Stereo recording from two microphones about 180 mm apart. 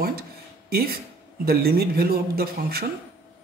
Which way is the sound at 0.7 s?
60° right (ahead or behind).